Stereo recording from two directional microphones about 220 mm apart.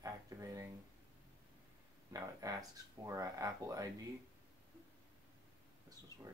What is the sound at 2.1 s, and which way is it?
Speech, 15° right (ahead or behind).